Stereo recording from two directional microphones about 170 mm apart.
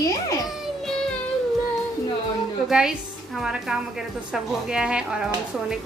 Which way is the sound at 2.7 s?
5° right (ahead or behind).